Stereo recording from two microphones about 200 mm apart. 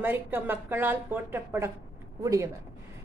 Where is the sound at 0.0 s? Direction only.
10° right (ahead or behind).